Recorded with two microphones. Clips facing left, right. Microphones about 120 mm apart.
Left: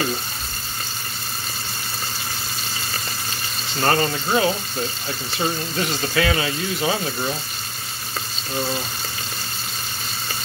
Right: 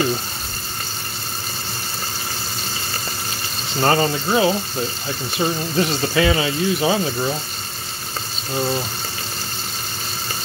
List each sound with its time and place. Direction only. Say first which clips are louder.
3.8 s speech: right 3 dB; 20° right (ahead or behind)
5.4 s speech: right 3 dB; 10° right (ahead or behind)
5.8 s speech: right 5 dB; 20° right (ahead or behind)